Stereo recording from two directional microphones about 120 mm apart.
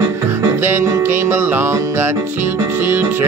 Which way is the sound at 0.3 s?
20° right (ahead or behind).